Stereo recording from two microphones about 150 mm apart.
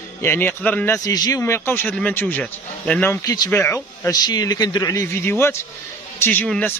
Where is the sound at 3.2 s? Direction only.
25° left (ahead or behind).